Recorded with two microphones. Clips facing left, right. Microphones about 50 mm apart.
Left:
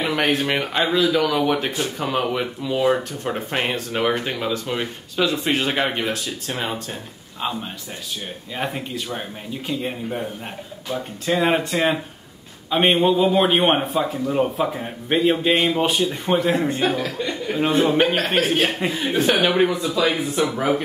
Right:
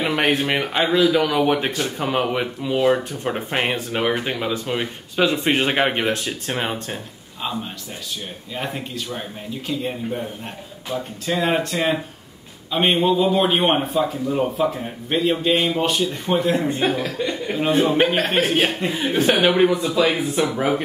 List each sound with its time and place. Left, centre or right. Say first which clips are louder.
0.0 s speech: right 1 dB; centre
2.8 s speech: right 1 dB; centre
5.2 s speech: right 2 dB; right
6.0 s speech: right 3 dB; right
8.5 s a man's voice: left 1 dB; centre
11.2 s a man's voice: left 2 dB; centre
16.8 s speech: right 1 dB; centre